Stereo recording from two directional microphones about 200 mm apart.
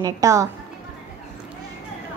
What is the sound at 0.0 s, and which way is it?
Speech, 15° right (ahead or behind).